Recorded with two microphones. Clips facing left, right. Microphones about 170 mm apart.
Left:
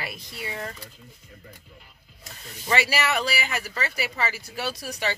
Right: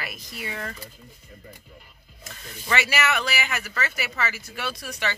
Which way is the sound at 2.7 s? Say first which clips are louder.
Left 1 dB; 35° left (ahead or behind).